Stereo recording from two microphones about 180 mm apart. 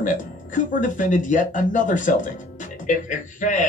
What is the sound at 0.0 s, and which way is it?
Speech, 45° left (ahead or behind).